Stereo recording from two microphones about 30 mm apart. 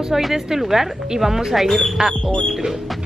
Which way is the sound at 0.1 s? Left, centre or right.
Centre.